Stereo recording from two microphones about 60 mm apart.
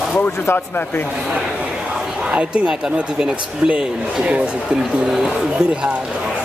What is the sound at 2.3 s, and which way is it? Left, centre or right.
Speech, centre.